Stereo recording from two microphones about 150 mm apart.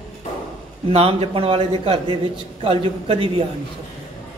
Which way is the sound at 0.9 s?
40° right (ahead or behind).